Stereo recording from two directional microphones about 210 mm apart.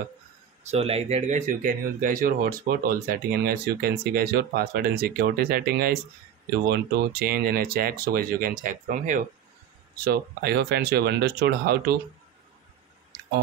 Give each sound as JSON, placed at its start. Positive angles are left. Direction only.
{"t": 0.7, "sound": "speech", "side_deg": -30}
{"t": 10.0, "sound": "speech", "side_deg": -50}